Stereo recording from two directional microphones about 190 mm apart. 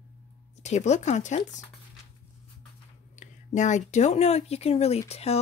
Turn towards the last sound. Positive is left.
turn(degrees=35)  # may be behind; listen again after turning